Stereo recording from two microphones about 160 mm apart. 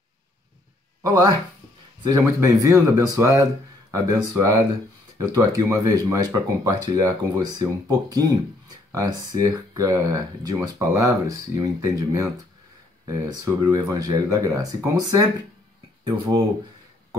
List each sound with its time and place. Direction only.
1.0 s speech: 20° right (ahead or behind)
16.0 s speech: 30° right (ahead or behind)